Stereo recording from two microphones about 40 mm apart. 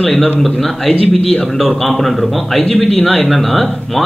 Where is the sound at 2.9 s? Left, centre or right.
Left.